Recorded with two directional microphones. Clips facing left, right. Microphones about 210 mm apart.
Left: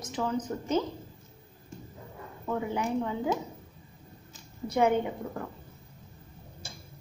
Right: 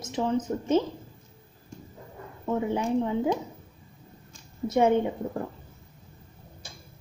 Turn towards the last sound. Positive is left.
turn(degrees=-25)  # may be behind; listen again after turning